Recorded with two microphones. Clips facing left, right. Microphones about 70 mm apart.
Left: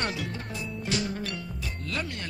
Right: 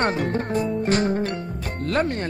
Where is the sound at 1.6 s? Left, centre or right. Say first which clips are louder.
Right 13 dB; right.